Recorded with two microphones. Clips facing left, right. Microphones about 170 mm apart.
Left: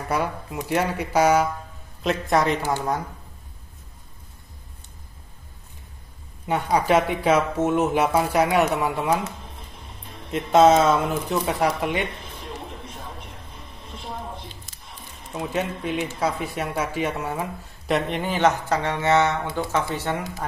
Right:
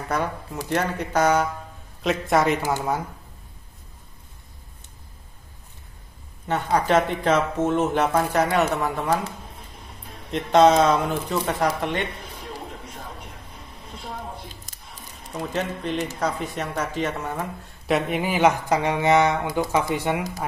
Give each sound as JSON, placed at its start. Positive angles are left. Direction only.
{"t": 0.1, "sound": "speech", "side_deg": 10}
{"t": 6.4, "sound": "speech", "side_deg": 10}
{"t": 10.3, "sound": "speech", "side_deg": 5}
{"t": 14.7, "sound": "a sound", "side_deg": -45}
{"t": 15.3, "sound": "speech", "side_deg": 5}